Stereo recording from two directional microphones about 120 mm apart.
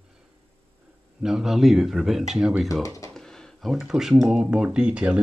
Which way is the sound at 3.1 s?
5° left (ahead or behind).